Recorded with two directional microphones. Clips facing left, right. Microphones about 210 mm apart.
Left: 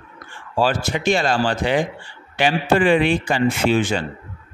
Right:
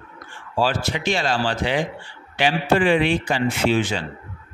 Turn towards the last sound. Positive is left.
turn(degrees=50)  # may be behind; listen again after turning